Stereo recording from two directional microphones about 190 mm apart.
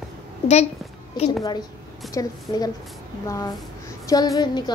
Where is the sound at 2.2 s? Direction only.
20° left (ahead or behind).